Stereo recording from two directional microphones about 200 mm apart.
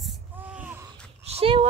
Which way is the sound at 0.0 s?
5° right (ahead or behind).